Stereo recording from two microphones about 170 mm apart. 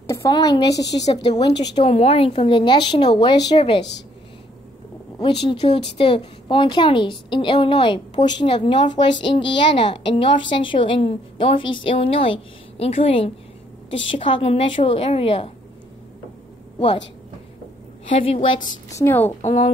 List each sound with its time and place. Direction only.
0.0 s speech: 20° left (ahead or behind)
1.8 s a woman's voice: 35° left (ahead or behind)
5.2 s a woman's voice: 30° left (ahead or behind)
18.1 s a woman's voice: 35° left (ahead or behind)
19.0 s a woman's voice: 10° left (ahead or behind)
19.4 s speech: 40° left (ahead or behind)